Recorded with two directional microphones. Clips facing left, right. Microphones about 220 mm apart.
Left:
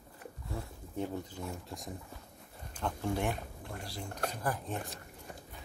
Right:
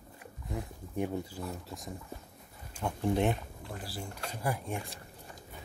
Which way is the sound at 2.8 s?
20° right (ahead or behind).